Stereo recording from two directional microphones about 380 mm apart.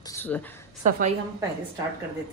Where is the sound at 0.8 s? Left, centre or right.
Centre.